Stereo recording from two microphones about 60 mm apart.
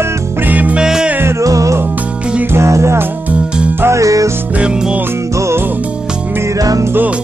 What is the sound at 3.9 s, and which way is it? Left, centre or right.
Music, right.